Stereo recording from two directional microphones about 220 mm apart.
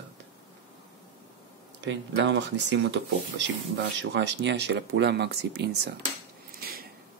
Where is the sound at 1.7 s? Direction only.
55° right (ahead or behind).